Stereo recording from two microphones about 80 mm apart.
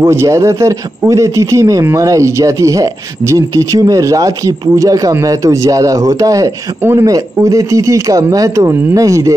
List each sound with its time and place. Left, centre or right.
0.1 s speech: right
6.8 s a man's voice: right
7.1 s speech: right